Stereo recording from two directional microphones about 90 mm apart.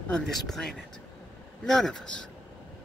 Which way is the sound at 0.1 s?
5° left (ahead or behind).